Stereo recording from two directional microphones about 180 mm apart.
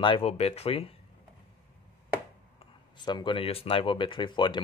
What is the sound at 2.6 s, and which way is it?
Speech, 25° left (ahead or behind).